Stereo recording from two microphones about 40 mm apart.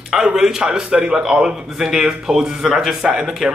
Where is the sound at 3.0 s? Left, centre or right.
Centre.